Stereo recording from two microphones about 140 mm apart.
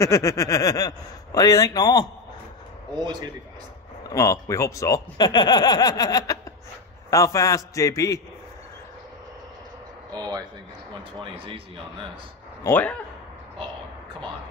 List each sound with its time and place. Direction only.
0.0 s speech: 20° left (ahead or behind)
3.0 s speech: 30° right (ahead or behind)
4.1 s speech: 25° left (ahead or behind)
11.1 s speech: 40° right (ahead or behind)
12.6 s a man's voice: 15° left (ahead or behind)